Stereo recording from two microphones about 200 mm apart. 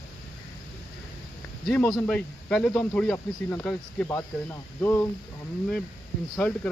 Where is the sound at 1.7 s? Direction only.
5° left (ahead or behind).